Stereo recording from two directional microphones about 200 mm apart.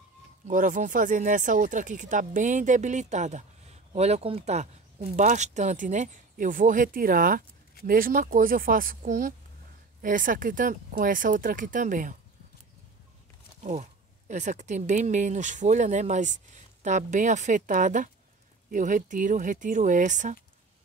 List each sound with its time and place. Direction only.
0.5 s speech: 40° right (ahead or behind)
13.6 s speech: 35° right (ahead or behind)